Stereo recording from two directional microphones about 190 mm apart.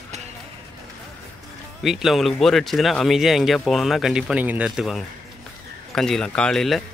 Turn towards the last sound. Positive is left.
turn(degrees=0)  # may be behind; listen again after turning